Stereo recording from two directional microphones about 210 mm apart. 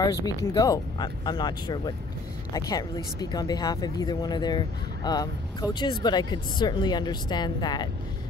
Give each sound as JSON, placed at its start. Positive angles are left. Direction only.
{"t": 0.0, "sound": "speech", "side_deg": 20}